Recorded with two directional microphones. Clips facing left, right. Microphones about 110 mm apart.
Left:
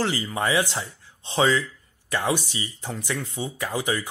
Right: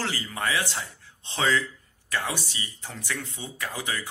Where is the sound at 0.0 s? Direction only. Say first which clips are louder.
Left 5 dB; 20° left (ahead or behind).